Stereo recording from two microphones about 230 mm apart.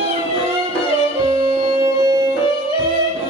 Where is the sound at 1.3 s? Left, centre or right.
Centre.